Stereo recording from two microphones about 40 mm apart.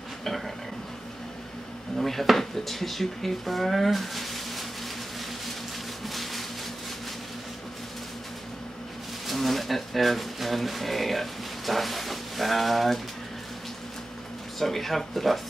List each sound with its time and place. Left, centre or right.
2.0 s speech: centre
6.0 s a sound: centre
9.3 s speech: centre
14.6 s speech: centre